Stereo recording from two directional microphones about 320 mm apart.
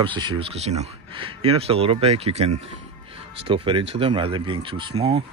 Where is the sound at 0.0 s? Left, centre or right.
Centre.